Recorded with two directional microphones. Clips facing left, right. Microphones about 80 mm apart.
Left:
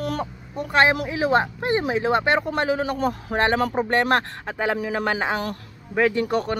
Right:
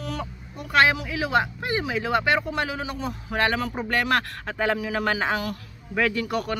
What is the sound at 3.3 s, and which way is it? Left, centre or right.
Speech, left.